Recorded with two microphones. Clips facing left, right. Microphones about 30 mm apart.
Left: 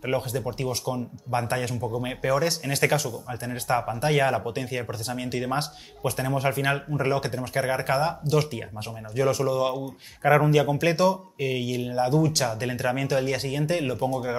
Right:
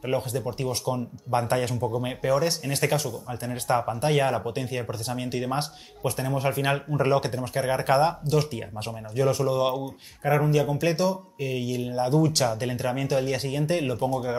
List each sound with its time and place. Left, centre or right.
0.0 s speech: centre
1.6 s speech: centre
9.5 s speech: centre
10.2 s speech: left; by 14.3 s centre